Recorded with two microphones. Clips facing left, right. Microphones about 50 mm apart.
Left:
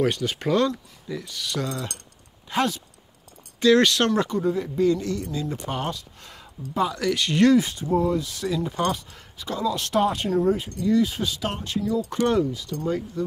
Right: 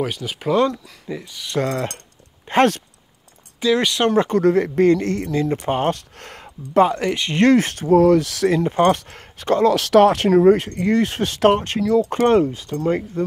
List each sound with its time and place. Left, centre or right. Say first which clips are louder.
0.0 s speech: even; centre
0.7 s speech: right 3 dB; right
1.5 s speech: right 8 dB; right
2.5 s speech: right 8 dB; right
3.6 s speech: even; centre
4.4 s speech: right 7 dB; right
7.5 s speech: right 6 dB; right
8.5 s speech: right 9 dB; right
10.7 s speech: right 3 dB; right